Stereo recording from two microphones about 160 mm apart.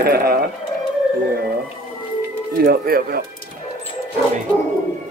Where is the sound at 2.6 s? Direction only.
70° right (ahead or behind).